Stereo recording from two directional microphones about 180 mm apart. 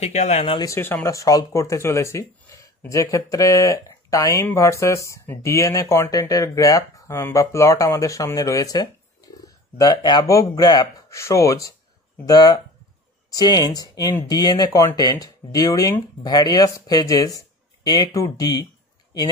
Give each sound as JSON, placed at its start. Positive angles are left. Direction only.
{"t": 0.0, "sound": "speech", "side_deg": 40}
{"t": 0.6, "sound": "speech", "side_deg": 15}